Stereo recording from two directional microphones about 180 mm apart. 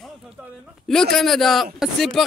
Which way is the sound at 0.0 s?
Centre (ahead or behind).